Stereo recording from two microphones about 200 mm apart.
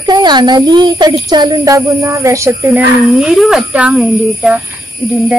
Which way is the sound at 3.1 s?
Centre (ahead or behind).